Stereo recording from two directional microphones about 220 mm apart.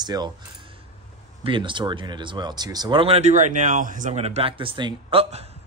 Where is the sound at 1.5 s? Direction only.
20° right (ahead or behind).